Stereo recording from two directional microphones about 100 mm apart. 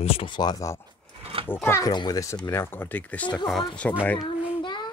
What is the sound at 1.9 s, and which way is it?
Speech, 45° left (ahead or behind).